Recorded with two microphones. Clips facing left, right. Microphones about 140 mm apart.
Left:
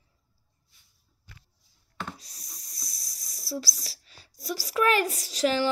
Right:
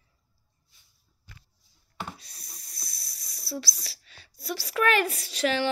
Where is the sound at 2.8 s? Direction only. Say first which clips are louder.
Left 1 dB; 40° left (ahead or behind).